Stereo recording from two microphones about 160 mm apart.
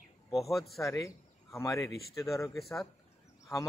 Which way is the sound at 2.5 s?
Centre (ahead or behind).